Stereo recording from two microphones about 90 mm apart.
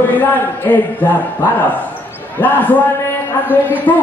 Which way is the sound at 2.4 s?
20° left (ahead or behind).